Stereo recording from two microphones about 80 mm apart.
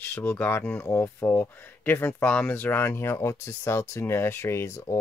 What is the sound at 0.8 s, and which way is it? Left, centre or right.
Speech, left.